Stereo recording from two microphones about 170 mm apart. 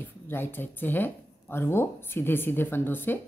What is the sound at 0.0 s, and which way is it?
A woman's voice, 15° left (ahead or behind).